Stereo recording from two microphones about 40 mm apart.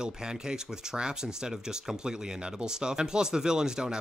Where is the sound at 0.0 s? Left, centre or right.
Centre.